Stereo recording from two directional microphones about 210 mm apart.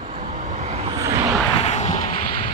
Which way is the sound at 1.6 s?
30° left (ahead or behind).